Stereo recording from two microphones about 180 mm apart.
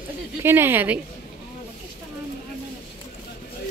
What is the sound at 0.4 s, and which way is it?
Speech, 10° right (ahead or behind).